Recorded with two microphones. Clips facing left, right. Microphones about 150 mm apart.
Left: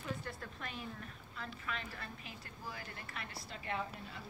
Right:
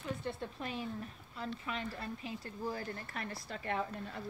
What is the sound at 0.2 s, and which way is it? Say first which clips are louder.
A woman's voice: right 6 dB; 25° right (ahead or behind).